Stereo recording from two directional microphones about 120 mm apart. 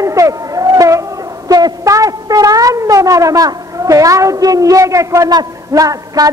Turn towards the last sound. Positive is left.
turn(degrees=-30)  # may be behind; listen again after turning